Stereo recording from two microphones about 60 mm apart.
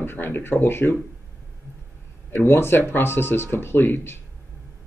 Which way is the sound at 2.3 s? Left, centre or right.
Left.